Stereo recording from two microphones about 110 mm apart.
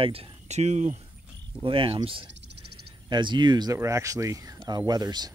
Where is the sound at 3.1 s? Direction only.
45° right (ahead or behind).